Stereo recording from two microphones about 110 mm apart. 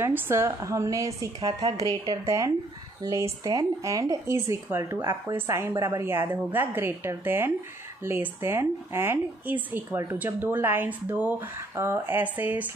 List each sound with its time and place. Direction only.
0.0 s a woman's voice: 20° right (ahead or behind)